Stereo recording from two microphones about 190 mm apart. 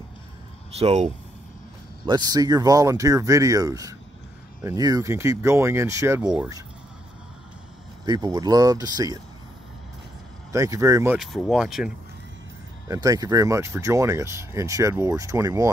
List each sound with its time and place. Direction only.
0.7 s speech: 35° right (ahead or behind)
2.0 s speech: 20° right (ahead or behind)
8.0 s speech: 20° right (ahead or behind)
10.5 s speech: 15° right (ahead or behind)
11.1 s speech: centre (ahead or behind)
12.8 s speech: 20° right (ahead or behind)